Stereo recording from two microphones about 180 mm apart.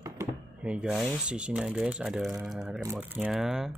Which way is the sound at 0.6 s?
5° right (ahead or behind).